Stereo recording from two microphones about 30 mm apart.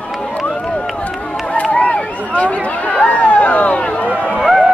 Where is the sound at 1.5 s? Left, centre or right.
Left.